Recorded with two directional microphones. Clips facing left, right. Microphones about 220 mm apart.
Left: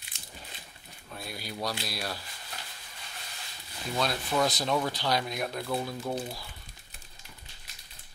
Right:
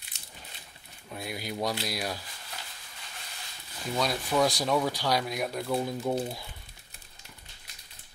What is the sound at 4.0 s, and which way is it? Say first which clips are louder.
Speech: right 2 dB; 10° right (ahead or behind).